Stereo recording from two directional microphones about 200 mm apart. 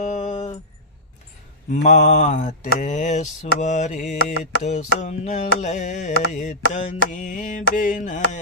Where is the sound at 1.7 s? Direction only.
35° left (ahead or behind).